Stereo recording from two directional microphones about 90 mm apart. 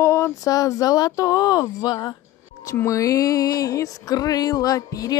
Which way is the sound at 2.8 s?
35° left (ahead or behind).